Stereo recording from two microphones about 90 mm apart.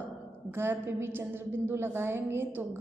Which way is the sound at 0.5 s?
25° right (ahead or behind).